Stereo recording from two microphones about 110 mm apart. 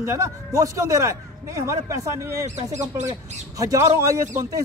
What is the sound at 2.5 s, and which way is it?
Speech, 90° right.